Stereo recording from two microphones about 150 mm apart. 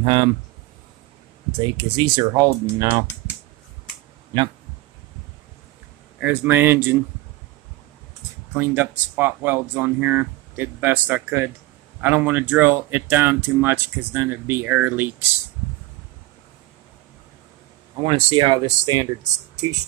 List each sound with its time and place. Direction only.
0.0 s speech: 30° right (ahead or behind)
1.8 s speech: 30° right (ahead or behind)
6.1 s speech: 10° right (ahead or behind)
8.5 s speech: 15° right (ahead or behind)
18.0 s speech: 30° right (ahead or behind)